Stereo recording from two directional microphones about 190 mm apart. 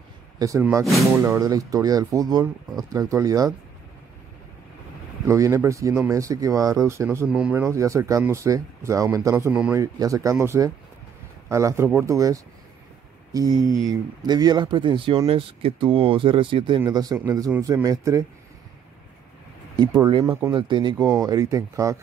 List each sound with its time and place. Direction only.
0.4 s speech: 15° right (ahead or behind)
2.4 s speech: centre (ahead or behind)
2.9 s speech: 15° right (ahead or behind)
5.2 s speech: 15° right (ahead or behind)
20.0 s speech: 25° right (ahead or behind)
20.2 s speech: 15° right (ahead or behind)
20.5 s speech: 25° right (ahead or behind)